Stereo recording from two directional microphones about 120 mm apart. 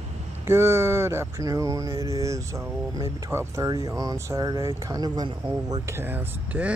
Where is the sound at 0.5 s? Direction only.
20° right (ahead or behind).